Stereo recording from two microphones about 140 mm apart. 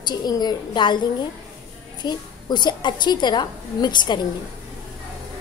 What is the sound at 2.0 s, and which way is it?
A woman's voice, 30° left (ahead or behind).